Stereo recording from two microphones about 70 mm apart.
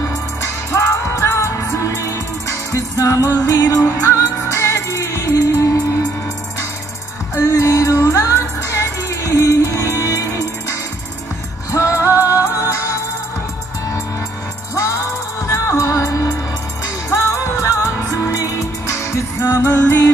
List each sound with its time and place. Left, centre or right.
0.7 s music: left
4.7 s music: left
7.3 s music: left
11.7 s music: left
14.8 s music: left